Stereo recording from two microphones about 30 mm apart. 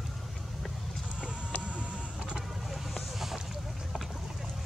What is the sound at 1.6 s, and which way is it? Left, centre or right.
Vehicle, right.